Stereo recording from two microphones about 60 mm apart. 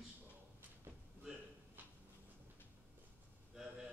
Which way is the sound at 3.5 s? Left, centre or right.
Centre.